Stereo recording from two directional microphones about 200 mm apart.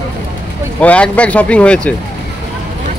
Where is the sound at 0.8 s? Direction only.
5° left (ahead or behind).